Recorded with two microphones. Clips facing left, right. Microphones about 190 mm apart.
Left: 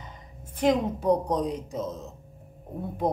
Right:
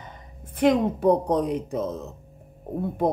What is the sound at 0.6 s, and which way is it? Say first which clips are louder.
A woman's voice: right 4 dB; 60° right (ahead or behind).